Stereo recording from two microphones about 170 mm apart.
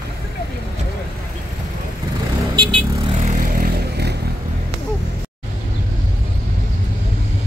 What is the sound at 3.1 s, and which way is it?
Vehicle, 45° right (ahead or behind).